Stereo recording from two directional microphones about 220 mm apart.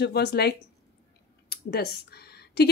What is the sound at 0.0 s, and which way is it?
Speech, 50° left (ahead or behind).